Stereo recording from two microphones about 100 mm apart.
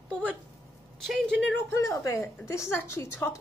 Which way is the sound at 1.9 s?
35° left (ahead or behind).